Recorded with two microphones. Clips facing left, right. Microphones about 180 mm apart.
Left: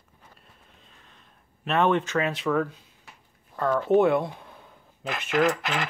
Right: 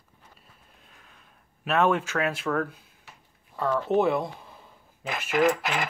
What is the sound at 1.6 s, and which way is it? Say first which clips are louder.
Speech: left 1 dB; 5° right (ahead or behind).